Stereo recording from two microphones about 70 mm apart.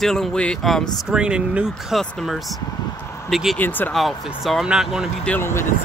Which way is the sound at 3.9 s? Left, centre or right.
Centre.